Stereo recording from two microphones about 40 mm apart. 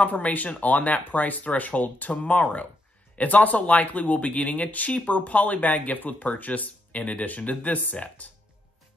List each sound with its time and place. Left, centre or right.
0.0 s speech: left